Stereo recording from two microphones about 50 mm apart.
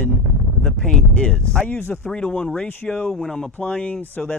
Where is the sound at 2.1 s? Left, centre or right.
Centre.